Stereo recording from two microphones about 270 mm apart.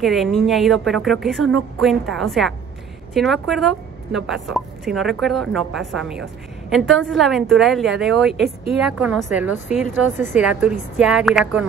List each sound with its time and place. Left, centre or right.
0.0 s a woman's voice: centre